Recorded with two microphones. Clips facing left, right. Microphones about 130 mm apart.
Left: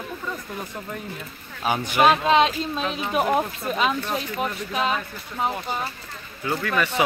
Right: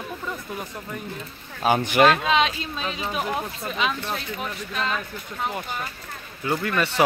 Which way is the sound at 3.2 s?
45° left (ahead or behind).